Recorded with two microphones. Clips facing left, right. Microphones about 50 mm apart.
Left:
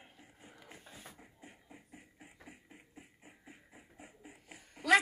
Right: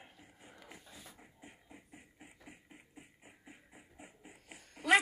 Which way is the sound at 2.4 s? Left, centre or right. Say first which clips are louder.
Even; right.